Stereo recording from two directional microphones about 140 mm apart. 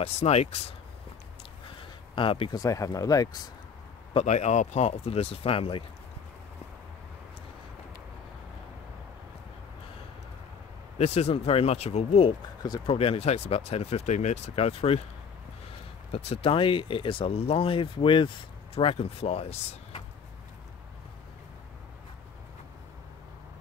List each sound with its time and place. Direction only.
0.0 s speech: 50° left (ahead or behind)
2.1 s speech: 40° left (ahead or behind)
2.5 s speech: 25° left (ahead or behind)
4.1 s speech: 50° left (ahead or behind)
11.0 s speech: 50° left (ahead or behind)
12.6 s speech: 30° left (ahead or behind)
12.9 s speech: 45° left (ahead or behind)
16.1 s speech: 45° left (ahead or behind)